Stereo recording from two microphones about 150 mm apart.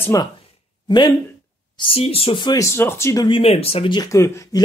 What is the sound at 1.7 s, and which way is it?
Speech, 35° left (ahead or behind).